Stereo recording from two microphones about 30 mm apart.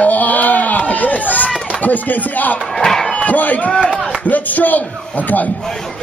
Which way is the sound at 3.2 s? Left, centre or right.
Left.